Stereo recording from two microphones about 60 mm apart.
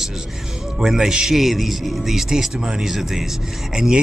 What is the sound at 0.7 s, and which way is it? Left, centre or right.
A man's voice, centre.